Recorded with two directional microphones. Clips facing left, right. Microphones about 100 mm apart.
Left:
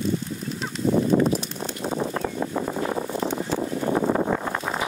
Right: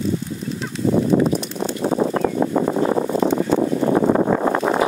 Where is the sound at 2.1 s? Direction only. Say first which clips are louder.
Right 8 dB; 80° right.